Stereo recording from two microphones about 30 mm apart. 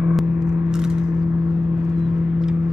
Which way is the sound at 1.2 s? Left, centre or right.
Right.